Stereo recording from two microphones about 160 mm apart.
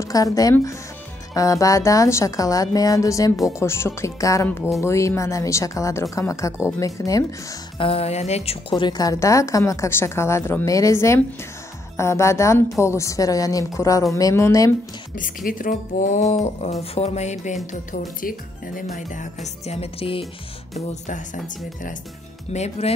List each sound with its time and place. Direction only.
0.0 s a woman's voice: 20° left (ahead or behind)
7.8 s a woman's voice: 40° left (ahead or behind); by 14.7 s 15° left (ahead or behind)
15.1 s speech: 55° left (ahead or behind)
18.2 s speech: 65° left (ahead or behind)
18.8 s speech: 50° left (ahead or behind); by 20.2 s 35° left (ahead or behind)
22.5 s speech: 45° left (ahead or behind)